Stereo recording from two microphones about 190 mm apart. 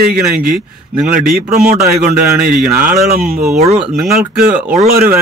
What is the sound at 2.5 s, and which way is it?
Speech, 5° right (ahead or behind).